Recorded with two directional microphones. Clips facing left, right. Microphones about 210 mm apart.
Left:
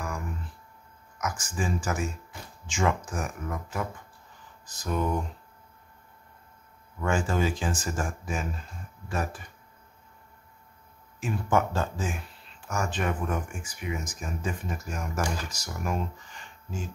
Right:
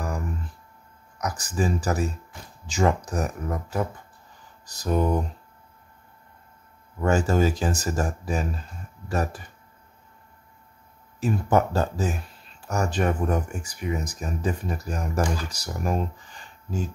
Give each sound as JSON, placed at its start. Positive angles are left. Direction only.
{"t": 1.1, "sound": "speech", "side_deg": -35}
{"t": 7.0, "sound": "speech", "side_deg": -40}
{"t": 11.1, "sound": "speech", "side_deg": -40}